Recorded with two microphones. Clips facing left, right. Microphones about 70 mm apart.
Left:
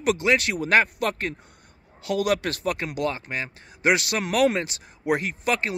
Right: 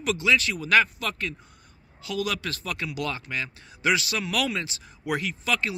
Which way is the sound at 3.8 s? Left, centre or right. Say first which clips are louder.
Left 3 dB; left.